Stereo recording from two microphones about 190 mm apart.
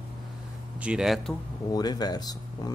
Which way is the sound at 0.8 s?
5° right (ahead or behind).